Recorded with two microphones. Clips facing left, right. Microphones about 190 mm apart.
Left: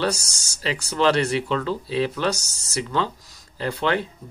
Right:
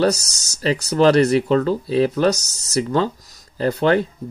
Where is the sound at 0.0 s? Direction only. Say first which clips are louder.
Right 7 dB; 40° right (ahead or behind).